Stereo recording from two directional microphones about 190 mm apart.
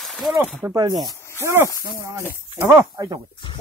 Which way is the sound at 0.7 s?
20° right (ahead or behind).